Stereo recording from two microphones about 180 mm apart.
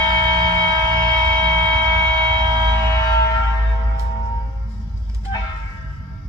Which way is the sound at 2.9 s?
15° left (ahead or behind).